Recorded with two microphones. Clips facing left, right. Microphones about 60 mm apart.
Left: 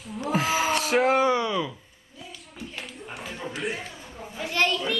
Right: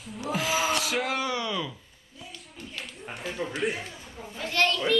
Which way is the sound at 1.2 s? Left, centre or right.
Left.